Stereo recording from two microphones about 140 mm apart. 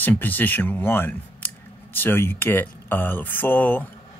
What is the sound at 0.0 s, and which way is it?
Speech, 10° left (ahead or behind).